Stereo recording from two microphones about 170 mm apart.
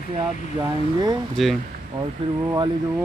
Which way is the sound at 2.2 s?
30° right (ahead or behind).